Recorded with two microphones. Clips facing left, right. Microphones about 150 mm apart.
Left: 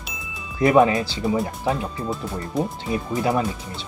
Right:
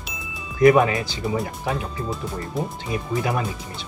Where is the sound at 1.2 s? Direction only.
Centre (ahead or behind).